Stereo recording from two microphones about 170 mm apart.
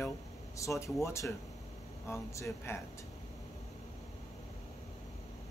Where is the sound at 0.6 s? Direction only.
20° left (ahead or behind).